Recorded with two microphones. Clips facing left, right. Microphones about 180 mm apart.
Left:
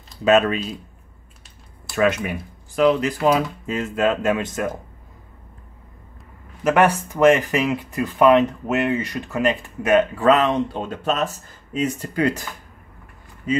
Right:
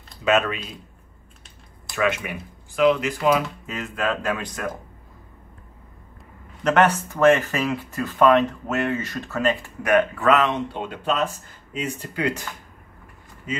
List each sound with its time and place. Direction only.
0.2 s speech: 35° left (ahead or behind)
2.0 s speech: 35° left (ahead or behind)
6.6 s speech: 10° left (ahead or behind); by 12.4 s 40° left (ahead or behind)